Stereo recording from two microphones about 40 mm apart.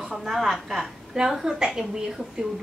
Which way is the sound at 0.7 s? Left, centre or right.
Centre.